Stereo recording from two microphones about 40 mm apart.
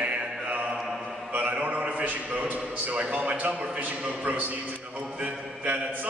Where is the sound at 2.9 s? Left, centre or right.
Right.